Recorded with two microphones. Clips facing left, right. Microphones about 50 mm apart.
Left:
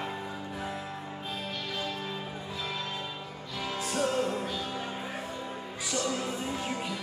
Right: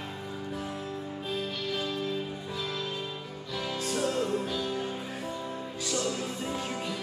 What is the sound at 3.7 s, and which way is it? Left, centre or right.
Music, left.